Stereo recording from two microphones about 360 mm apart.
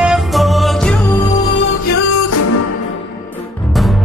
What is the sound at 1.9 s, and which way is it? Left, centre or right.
Music, left.